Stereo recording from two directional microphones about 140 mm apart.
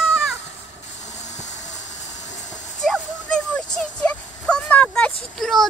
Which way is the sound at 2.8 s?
5° left (ahead or behind).